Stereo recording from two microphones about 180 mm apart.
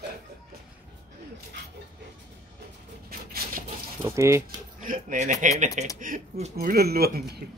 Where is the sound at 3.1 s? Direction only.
55° right (ahead or behind).